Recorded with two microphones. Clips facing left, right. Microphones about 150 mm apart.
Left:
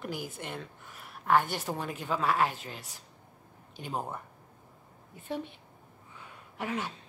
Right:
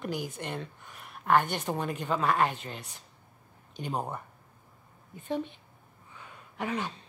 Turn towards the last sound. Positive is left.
turn(degrees=5)  # may be behind; listen again after turning